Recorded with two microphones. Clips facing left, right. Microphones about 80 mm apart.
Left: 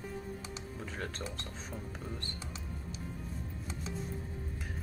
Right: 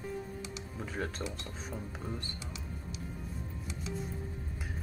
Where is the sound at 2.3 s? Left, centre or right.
Left.